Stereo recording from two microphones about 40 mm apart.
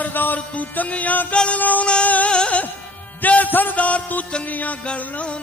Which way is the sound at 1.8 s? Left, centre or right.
Left.